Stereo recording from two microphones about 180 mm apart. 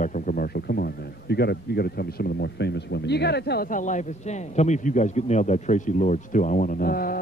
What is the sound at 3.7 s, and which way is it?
A man's voice, 45° left (ahead or behind).